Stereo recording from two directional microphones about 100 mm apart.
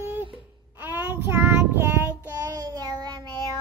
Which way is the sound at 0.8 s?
20° right (ahead or behind).